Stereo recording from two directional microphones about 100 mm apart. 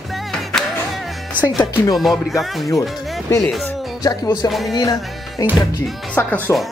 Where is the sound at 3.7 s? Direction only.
Centre (ahead or behind).